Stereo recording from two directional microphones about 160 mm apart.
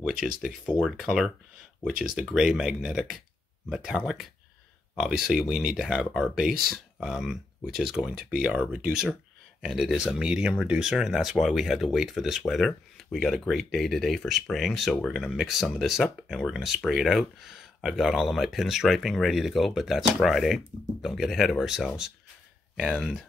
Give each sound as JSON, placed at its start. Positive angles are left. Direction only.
{"t": 0.1, "sound": "speech", "side_deg": -5}